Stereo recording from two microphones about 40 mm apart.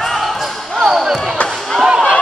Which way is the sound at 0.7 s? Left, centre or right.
Centre.